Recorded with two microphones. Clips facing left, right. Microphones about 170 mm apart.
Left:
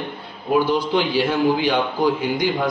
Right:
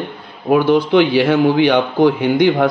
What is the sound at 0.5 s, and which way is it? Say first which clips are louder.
A man's voice: right 6 dB; 65° right (ahead or behind).